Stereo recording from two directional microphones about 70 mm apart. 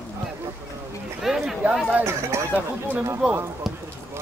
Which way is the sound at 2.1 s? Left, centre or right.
Right.